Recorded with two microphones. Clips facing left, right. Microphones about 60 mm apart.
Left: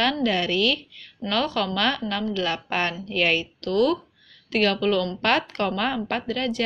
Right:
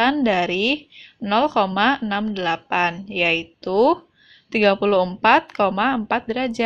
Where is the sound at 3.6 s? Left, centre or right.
Right.